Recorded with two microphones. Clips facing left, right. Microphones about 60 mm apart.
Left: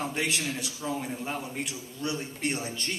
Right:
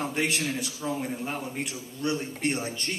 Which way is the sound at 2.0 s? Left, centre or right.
Right.